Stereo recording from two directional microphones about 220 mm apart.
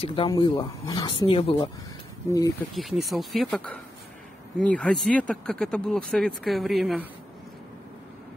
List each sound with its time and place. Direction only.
0.0 s speech: 25° left (ahead or behind)
2.7 s speech: centre (ahead or behind)